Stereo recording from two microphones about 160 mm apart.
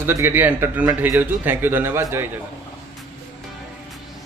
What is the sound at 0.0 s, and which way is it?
A man's voice, 15° right (ahead or behind).